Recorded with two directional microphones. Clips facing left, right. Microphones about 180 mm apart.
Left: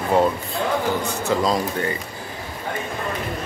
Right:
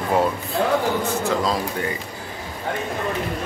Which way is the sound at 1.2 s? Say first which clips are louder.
Left 1 dB; 5° right (ahead or behind).